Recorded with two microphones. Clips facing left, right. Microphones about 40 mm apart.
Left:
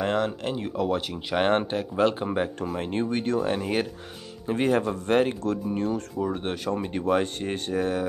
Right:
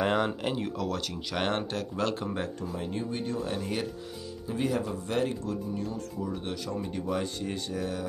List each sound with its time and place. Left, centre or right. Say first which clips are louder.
0.0 s speech: left 1 dB; centre
0.7 s speech: left 6 dB; left
2.0 s speech: left 8 dB; left
2.6 s speech: left 6 dB; left
4.5 s speech: left 7 dB; left